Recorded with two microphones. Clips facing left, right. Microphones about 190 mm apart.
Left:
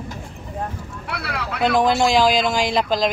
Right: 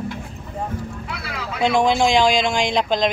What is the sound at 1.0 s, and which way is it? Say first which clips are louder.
Speech: left 2 dB; 60° left (ahead or behind).